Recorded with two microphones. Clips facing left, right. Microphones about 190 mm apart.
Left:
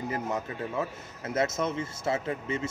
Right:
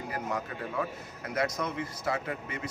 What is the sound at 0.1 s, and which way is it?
A man's voice, 25° left (ahead or behind).